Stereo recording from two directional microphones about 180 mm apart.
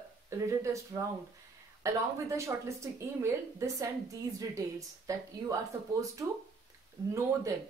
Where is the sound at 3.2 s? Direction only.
15° right (ahead or behind).